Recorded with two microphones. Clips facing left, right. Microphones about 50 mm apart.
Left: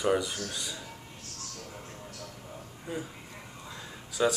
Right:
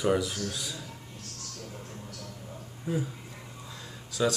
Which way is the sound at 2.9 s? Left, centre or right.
Centre.